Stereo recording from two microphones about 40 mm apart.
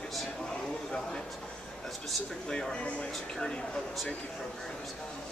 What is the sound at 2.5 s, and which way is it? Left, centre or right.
Speech, centre.